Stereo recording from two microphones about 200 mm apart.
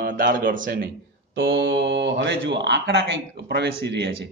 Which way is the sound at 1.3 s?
70° right (ahead or behind).